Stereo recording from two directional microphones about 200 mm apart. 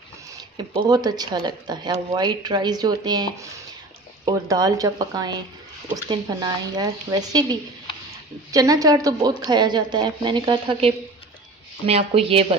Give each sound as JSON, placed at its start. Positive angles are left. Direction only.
{"t": 0.3, "sound": "speech", "side_deg": -20}